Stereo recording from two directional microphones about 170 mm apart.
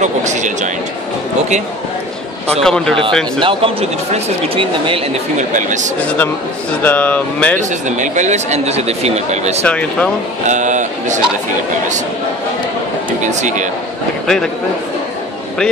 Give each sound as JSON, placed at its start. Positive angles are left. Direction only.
{"t": 0.0, "sound": "speech", "side_deg": -45}
{"t": 2.6, "sound": "speech", "side_deg": 5}
{"t": 3.3, "sound": "speech", "side_deg": -30}
{"t": 5.5, "sound": "speech", "side_deg": -45}
{"t": 6.0, "sound": "speech", "side_deg": 10}
{"t": 8.0, "sound": "speech", "side_deg": -45}
{"t": 9.7, "sound": "speech", "side_deg": 5}
{"t": 10.4, "sound": "speech", "side_deg": -45}
{"t": 13.2, "sound": "speech", "side_deg": -45}
{"t": 14.2, "sound": "a man's voice", "side_deg": 5}